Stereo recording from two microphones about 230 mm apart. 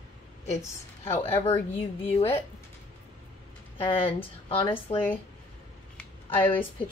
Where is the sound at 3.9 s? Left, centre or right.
Left.